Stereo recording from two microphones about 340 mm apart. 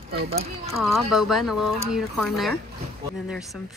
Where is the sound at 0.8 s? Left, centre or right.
Centre.